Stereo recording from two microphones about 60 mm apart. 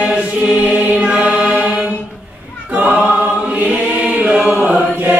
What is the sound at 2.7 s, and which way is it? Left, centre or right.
Choir, right.